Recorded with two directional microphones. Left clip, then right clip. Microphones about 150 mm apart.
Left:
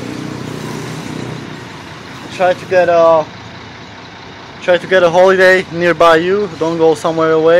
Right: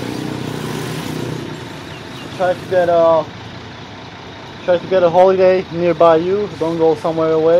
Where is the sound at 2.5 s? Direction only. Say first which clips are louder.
Left 3 dB; 25° left (ahead or behind).